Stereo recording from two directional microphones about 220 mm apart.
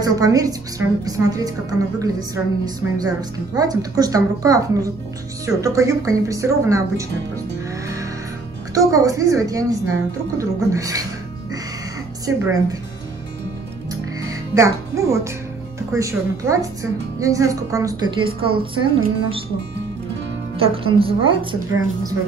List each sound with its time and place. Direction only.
0.0 s a woman's voice: 15° right (ahead or behind)
8.7 s a woman's voice: 15° right (ahead or behind)
12.3 s a woman's voice: 15° right (ahead or behind)
14.2 s a woman's voice: 15° right (ahead or behind)
20.5 s a woman's voice: 25° right (ahead or behind)